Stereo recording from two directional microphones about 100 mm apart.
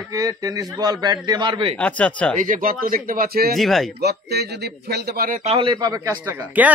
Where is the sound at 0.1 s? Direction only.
35° right (ahead or behind); by 1.8 s 60° right (ahead or behind).